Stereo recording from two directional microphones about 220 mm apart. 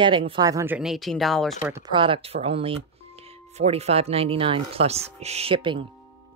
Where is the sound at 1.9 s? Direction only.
25° right (ahead or behind).